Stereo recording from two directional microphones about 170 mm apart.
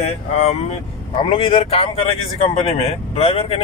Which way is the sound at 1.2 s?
30° left (ahead or behind).